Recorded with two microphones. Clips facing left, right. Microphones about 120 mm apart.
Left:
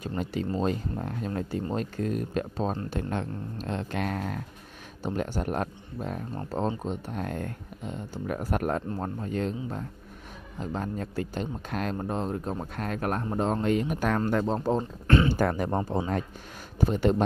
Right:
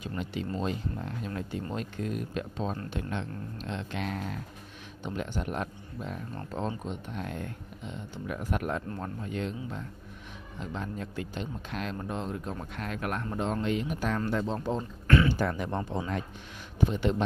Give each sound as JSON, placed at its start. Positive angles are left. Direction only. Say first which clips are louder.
{"t": 0.0, "sound": "speech", "louder": "left 4 dB", "side_deg": 40}
{"t": 8.8, "sound": "speech", "louder": "left 4 dB", "side_deg": 30}
{"t": 15.0, "sound": "speech", "louder": "left 1 dB", "side_deg": 30}
{"t": 15.3, "sound": "speech", "louder": "left 4 dB", "side_deg": 45}